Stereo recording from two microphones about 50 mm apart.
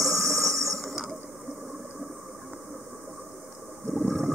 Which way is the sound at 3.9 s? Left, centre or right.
Centre.